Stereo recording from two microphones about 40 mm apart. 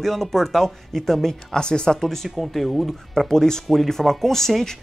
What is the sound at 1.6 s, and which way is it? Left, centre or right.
Speech, left.